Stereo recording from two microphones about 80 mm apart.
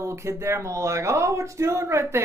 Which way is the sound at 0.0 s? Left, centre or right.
Right.